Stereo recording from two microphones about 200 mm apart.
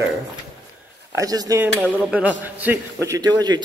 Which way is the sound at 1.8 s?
5° right (ahead or behind).